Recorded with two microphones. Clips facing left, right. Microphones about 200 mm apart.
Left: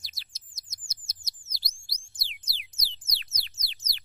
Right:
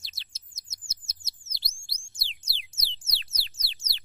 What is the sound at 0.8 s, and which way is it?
Bird, 25° right (ahead or behind).